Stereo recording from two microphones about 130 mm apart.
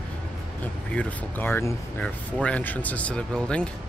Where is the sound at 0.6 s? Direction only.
10° left (ahead or behind).